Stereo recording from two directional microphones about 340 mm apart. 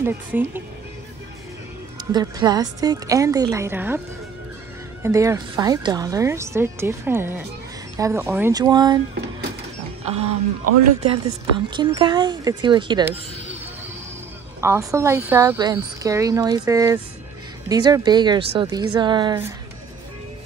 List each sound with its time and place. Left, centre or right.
0.0 s speech: centre
2.1 s speech: centre
5.0 s speech: centre
10.2 s speech: right
11.5 s speech: centre
14.6 s speech: centre